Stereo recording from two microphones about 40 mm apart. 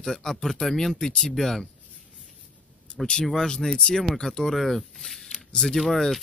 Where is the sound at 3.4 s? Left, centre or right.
Centre.